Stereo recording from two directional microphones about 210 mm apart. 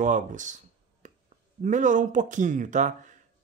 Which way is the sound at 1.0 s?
35° right (ahead or behind).